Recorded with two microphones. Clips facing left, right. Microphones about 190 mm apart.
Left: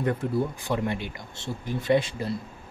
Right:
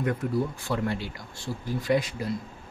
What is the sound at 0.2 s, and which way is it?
Speech, 25° left (ahead or behind).